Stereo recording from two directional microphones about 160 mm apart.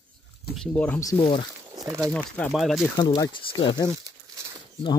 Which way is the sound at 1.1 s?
30° left (ahead or behind).